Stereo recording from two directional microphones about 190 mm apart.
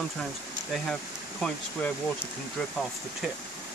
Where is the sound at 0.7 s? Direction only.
5° left (ahead or behind).